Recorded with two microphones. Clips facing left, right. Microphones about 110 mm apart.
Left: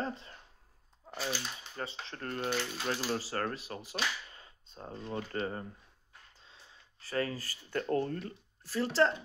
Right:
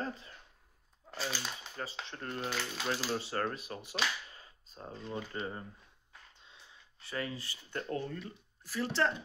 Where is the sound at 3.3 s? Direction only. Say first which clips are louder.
Even; 25° right (ahead or behind).